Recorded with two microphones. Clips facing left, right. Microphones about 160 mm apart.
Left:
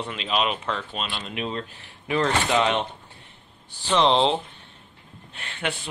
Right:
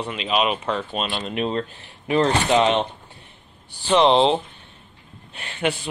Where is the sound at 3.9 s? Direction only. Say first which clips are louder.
Right 4 dB; 15° right (ahead or behind).